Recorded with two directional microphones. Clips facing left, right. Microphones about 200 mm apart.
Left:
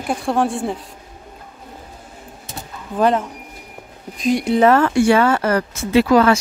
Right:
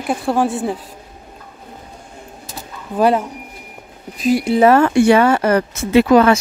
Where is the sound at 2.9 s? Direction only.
10° right (ahead or behind).